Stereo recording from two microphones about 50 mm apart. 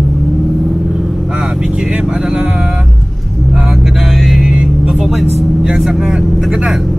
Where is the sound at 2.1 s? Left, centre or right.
Centre.